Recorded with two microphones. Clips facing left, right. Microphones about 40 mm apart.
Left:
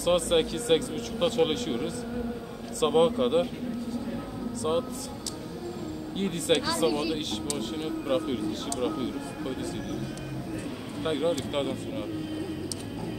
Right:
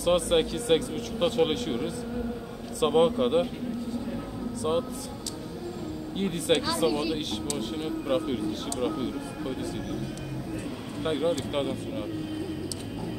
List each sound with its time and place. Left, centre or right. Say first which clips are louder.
0.0 s a man's voice: even; centre
4.6 s a man's voice: even; centre
6.1 s a man's voice: right 1 dB; centre
6.9 s speech: even; right
7.5 s a man's voice: right 1 dB; centre
11.1 s a man's voice: even; centre